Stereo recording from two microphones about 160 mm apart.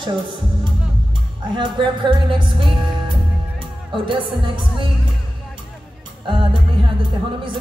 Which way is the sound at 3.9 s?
30° right (ahead or behind).